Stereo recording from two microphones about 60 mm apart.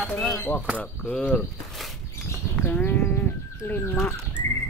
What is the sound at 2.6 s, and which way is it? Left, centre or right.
Sheep, left.